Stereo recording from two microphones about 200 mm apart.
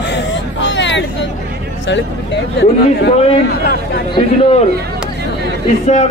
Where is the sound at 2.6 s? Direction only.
55° left (ahead or behind).